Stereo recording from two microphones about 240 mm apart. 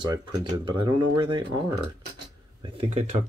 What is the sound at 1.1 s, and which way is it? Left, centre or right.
Speech, centre.